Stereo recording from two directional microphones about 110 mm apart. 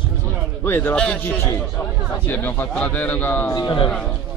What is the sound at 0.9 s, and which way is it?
A man's voice, 10° left (ahead or behind).